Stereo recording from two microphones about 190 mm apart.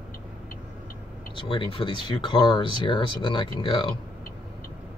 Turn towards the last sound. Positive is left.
turn(degrees=25)  # may be behind; listen again after turning